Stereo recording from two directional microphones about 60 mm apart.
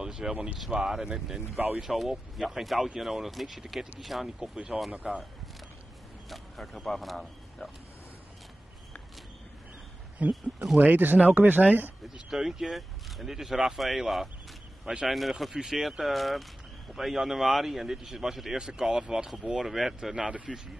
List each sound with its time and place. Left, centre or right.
0.0 s speech: centre
6.2 s speech: centre
10.2 s speech: right
12.1 s speech: centre